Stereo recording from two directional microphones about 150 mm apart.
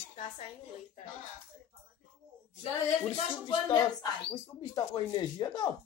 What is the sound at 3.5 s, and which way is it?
Speech, 30° left (ahead or behind).